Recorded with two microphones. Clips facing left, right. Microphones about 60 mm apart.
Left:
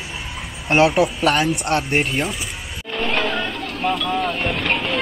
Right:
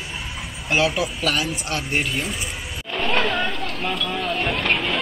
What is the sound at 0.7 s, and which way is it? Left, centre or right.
Speech, left.